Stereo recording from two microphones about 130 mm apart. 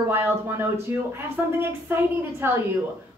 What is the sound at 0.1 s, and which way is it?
A woman's voice, 15° right (ahead or behind).